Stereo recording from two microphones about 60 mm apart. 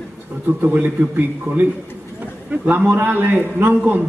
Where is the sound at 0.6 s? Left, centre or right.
Right.